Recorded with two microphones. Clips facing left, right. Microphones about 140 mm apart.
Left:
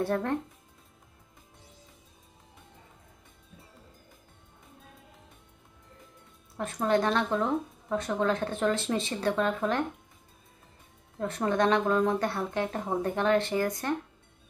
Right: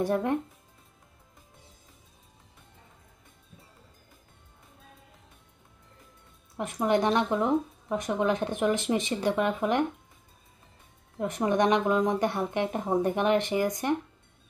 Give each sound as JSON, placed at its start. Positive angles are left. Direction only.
{"t": 0.0, "sound": "speech", "side_deg": -15}
{"t": 6.6, "sound": "speech", "side_deg": -15}
{"t": 11.1, "sound": "speech", "side_deg": -15}